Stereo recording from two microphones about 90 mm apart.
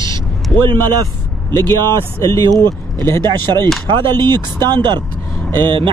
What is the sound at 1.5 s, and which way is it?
Speech, 50° right (ahead or behind).